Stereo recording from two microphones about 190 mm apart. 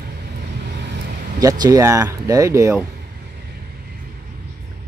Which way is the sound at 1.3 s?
20° right (ahead or behind).